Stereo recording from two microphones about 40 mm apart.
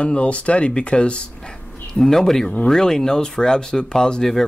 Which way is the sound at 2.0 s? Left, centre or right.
Centre.